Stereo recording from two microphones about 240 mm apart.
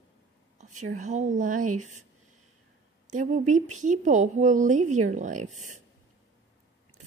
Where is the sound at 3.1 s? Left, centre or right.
Right.